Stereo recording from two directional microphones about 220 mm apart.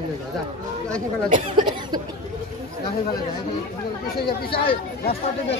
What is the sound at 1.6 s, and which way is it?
Cough, 20° right (ahead or behind).